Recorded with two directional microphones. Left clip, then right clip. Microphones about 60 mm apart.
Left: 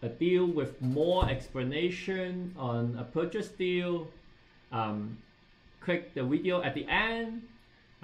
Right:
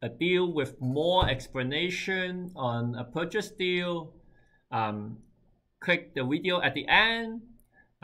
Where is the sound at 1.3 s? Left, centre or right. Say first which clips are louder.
Right 4 dB; right.